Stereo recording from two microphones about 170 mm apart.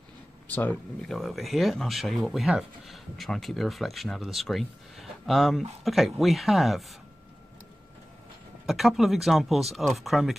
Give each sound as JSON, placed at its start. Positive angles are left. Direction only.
{"t": 0.5, "sound": "speech", "side_deg": 10}
{"t": 8.6, "sound": "speech", "side_deg": 0}